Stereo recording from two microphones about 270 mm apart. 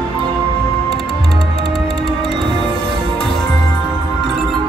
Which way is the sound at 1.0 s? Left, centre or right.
Right.